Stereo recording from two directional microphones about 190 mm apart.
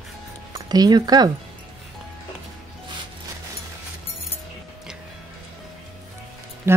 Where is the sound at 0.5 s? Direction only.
20° right (ahead or behind).